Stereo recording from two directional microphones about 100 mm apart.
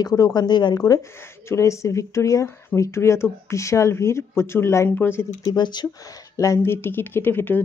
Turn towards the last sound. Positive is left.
turn(degrees=20)  # may be behind; listen again after turning